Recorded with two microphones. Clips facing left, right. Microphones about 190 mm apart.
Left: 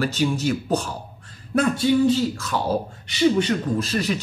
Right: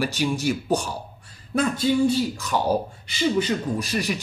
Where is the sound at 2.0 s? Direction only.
15° right (ahead or behind).